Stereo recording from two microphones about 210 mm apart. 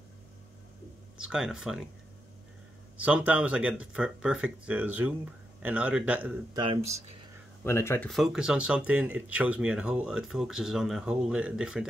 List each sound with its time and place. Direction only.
1.1 s speech: 5° right (ahead or behind)
3.0 s speech: 5° right (ahead or behind)
6.5 s speech: 20° right (ahead or behind)
7.6 s speech: 10° left (ahead or behind)